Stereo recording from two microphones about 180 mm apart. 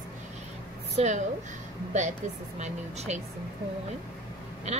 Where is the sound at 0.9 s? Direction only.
40° right (ahead or behind).